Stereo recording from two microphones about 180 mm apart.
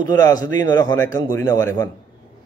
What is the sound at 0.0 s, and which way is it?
A man's voice, 20° left (ahead or behind).